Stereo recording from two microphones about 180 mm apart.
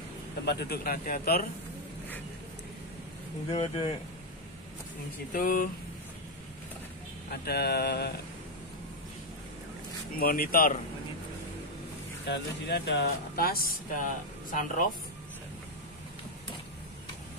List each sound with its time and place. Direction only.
0.5 s speech: 65° left (ahead or behind)
3.4 s speech: 30° left (ahead or behind)
5.3 s speech: 50° left (ahead or behind)
7.2 s speech: 60° left (ahead or behind)
10.1 s speech: 55° left (ahead or behind)
12.3 s speech: 70° left (ahead or behind); by 14.9 s 50° left (ahead or behind)